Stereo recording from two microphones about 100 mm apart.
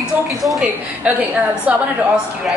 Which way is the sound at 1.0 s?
10° right (ahead or behind).